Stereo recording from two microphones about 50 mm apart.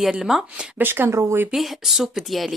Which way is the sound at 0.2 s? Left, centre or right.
Centre.